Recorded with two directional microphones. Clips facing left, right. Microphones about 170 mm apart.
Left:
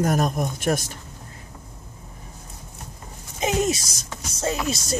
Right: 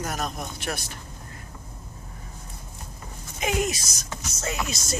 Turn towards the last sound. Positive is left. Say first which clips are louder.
# left 5 dB
turn(degrees=30)  # may be behind; listen again after turning